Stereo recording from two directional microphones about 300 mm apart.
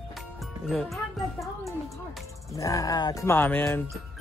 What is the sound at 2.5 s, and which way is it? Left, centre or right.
Music, centre.